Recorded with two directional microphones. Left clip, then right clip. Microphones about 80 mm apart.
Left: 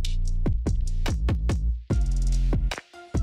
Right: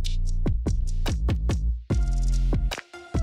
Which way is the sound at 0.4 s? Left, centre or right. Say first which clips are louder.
Even; left.